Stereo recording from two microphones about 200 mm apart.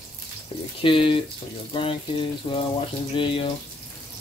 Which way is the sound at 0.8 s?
25° left (ahead or behind).